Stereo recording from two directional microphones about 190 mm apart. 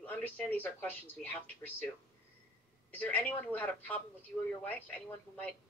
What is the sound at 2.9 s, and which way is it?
Speech, 10° left (ahead or behind).